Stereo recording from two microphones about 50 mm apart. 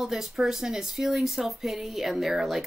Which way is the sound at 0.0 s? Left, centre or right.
Centre.